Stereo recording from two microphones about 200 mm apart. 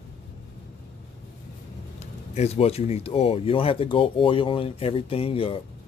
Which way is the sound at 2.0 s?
35° left (ahead or behind).